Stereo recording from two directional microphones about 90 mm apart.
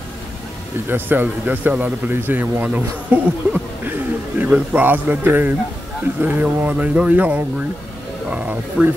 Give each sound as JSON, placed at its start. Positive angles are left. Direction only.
{"t": 0.8, "sound": "speech", "side_deg": -20}